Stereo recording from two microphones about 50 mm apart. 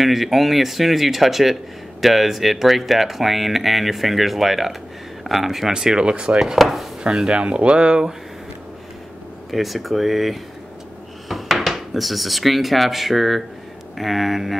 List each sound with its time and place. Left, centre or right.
0.0 s speech: centre; by 6.4 s right
6.4 s speech: centre
7.0 s speech: centre
9.5 s speech: centre